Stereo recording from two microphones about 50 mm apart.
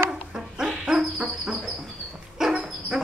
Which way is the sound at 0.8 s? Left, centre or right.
Centre.